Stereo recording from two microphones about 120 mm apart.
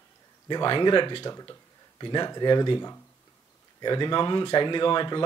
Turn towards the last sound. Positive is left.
turn(degrees=40)  # may be behind; listen again after turning